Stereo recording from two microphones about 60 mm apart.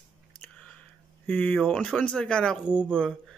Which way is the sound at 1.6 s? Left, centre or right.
Centre.